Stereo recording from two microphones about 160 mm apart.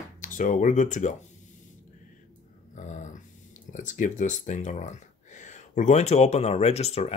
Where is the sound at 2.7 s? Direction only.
50° left (ahead or behind).